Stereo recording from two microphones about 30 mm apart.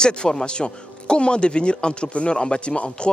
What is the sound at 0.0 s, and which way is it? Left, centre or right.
A man's voice, left.